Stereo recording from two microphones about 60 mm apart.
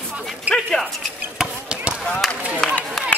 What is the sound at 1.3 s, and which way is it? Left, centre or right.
Basketball bounce, centre.